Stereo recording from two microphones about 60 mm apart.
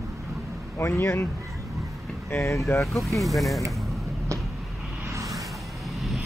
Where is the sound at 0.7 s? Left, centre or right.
Left.